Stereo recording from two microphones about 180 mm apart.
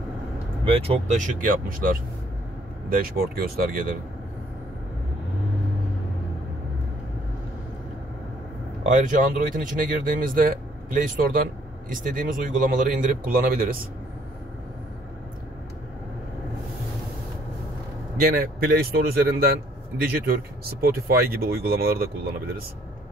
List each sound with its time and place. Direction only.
0.7 s speech: 30° right (ahead or behind); by 3.9 s 55° right (ahead or behind)
8.8 s speech: 45° right (ahead or behind)
18.2 s speech: 55° right (ahead or behind)
20.8 s speech: 60° right (ahead or behind)